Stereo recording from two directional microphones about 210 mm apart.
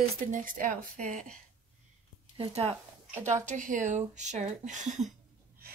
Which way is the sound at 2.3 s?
25° right (ahead or behind).